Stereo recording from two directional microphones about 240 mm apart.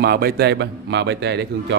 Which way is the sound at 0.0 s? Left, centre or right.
Right.